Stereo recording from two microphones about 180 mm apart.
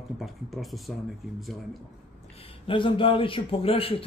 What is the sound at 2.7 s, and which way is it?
A man's voice, 30° left (ahead or behind).